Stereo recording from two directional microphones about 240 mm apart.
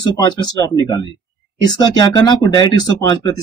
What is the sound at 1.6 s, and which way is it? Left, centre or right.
Speech, centre.